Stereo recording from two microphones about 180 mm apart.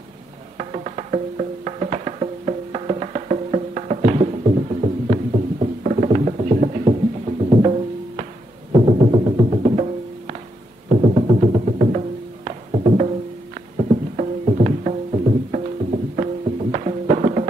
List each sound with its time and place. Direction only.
0.6 s music: 40° right (ahead or behind)
8.7 s music: 35° right (ahead or behind)